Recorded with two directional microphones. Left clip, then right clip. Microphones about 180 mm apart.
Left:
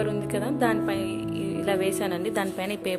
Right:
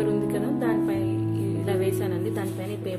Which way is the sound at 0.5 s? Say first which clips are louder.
Left 2 dB; 40° left (ahead or behind).